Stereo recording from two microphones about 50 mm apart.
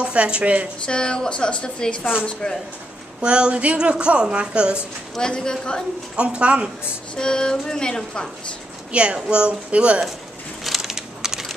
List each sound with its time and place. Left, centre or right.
0.0 s a woman's voice: right
0.8 s speech: centre
3.2 s a woman's voice: centre
5.1 s speech: centre
6.1 s a woman's voice: right
7.2 s speech: centre
8.9 s a woman's voice: right
10.6 s a sound: centre